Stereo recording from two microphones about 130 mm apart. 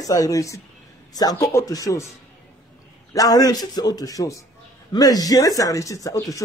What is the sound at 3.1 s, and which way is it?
Speech, 30° left (ahead or behind).